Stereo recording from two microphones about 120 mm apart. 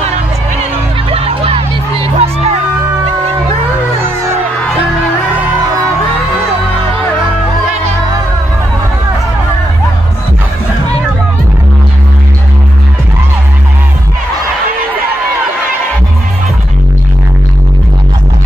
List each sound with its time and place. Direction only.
1.1 s music: 55° right (ahead or behind)